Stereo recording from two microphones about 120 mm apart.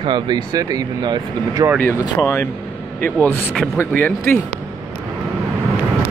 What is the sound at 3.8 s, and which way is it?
Speech, 20° left (ahead or behind).